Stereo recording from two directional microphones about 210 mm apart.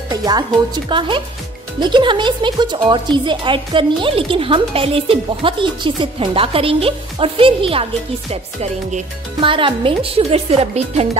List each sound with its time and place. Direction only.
0.1 s speech: 20° right (ahead or behind)